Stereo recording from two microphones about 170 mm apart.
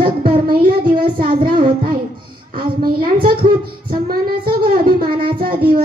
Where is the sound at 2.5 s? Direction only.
60° right (ahead or behind).